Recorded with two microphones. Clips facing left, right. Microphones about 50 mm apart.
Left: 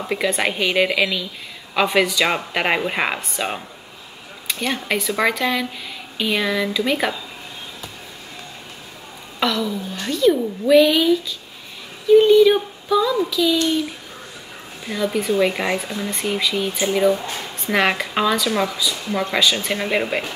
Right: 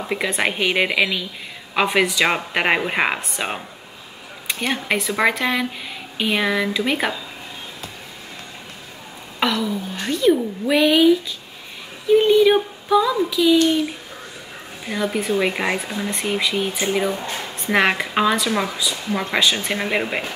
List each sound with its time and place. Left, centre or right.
0.2 s speech: centre
9.6 s speech: centre
14.9 s speech: centre